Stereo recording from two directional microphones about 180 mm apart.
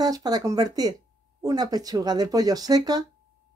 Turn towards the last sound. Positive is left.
turn(degrees=-20)  # may be behind; listen again after turning